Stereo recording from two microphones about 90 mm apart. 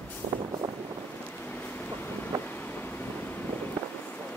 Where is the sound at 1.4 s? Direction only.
20° left (ahead or behind).